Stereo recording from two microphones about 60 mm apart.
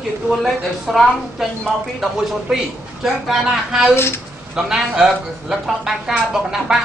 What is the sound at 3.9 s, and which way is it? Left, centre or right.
Speech, left.